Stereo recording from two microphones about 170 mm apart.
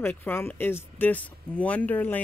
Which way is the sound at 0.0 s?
10° left (ahead or behind).